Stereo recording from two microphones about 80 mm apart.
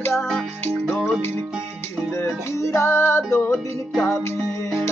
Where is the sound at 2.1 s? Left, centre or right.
Left.